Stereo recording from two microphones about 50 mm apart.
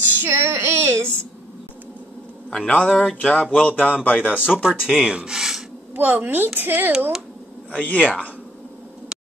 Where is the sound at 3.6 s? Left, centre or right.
Left.